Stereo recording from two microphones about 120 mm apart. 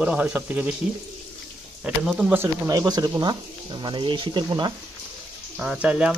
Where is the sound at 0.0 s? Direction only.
10° right (ahead or behind).